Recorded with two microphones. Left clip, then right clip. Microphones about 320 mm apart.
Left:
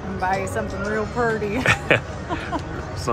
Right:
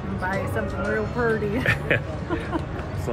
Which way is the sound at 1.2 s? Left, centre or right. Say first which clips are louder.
Left 3 dB; left.